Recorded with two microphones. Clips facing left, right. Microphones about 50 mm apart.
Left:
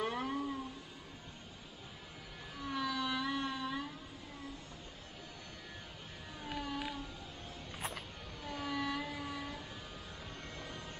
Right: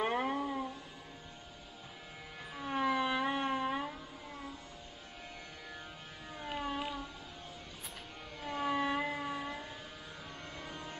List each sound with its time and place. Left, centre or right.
0.0 s music: right
2.5 s music: right
6.5 s cat: right
8.5 s vehicle: right
10.6 s music: right